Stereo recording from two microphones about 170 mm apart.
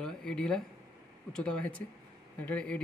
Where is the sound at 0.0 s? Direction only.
5° left (ahead or behind).